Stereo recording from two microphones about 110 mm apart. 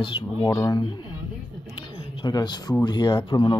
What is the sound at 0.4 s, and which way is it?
Speech, 30° left (ahead or behind).